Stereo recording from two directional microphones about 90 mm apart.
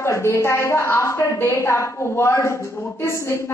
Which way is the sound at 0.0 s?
30° left (ahead or behind).